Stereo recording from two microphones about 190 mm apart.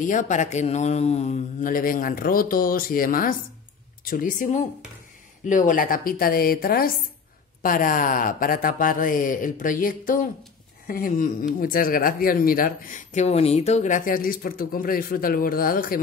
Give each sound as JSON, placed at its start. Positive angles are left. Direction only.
{"t": 0.0, "sound": "speech", "side_deg": 40}